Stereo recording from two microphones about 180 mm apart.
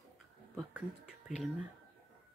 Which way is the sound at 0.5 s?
5° right (ahead or behind).